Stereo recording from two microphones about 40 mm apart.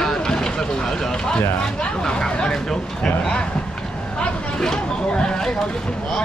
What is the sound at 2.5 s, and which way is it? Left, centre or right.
Speech, centre.